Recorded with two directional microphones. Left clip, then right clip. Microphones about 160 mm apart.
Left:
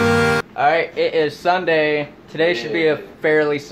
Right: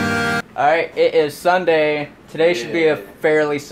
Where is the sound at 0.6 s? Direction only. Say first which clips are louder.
Right 3 dB; 25° right (ahead or behind).